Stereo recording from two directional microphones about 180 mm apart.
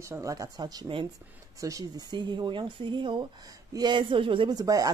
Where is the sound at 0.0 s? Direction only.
15° right (ahead or behind).